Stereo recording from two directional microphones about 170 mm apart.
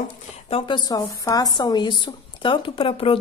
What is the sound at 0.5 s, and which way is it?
A woman's voice, 30° left (ahead or behind).